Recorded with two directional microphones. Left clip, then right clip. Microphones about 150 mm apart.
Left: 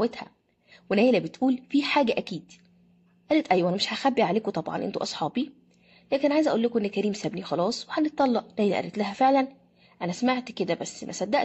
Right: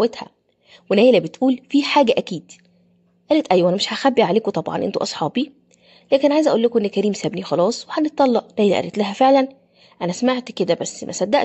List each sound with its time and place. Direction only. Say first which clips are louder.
0.0 s speech: right 8 dB; 40° right (ahead or behind)